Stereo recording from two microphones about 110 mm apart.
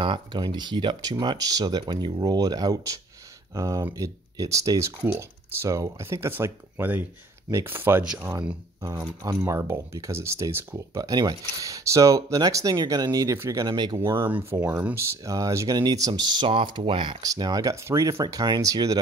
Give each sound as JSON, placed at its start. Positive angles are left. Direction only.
{"t": 0.0, "sound": "speech", "side_deg": -45}
{"t": 8.0, "sound": "speech", "side_deg": -10}
{"t": 8.8, "sound": "speech", "side_deg": -35}
{"t": 10.9, "sound": "speech", "side_deg": -35}
{"t": 15.0, "sound": "speech", "side_deg": -30}
{"t": 17.2, "sound": "speech", "side_deg": -35}